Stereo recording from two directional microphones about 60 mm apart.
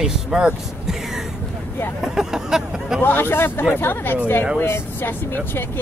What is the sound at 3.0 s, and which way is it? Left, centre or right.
Speech, left.